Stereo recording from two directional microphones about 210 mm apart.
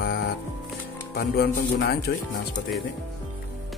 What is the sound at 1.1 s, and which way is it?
Speech, 50° left (ahead or behind).